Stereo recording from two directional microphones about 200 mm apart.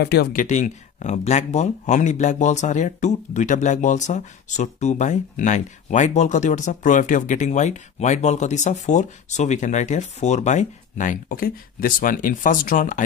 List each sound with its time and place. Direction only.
0.0 s speech: 55° left (ahead or behind)